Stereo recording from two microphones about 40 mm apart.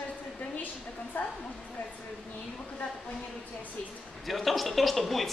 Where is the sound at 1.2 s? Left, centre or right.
Left.